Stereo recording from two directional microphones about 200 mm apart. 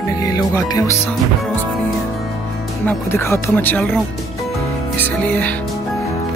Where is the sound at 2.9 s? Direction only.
15° left (ahead or behind).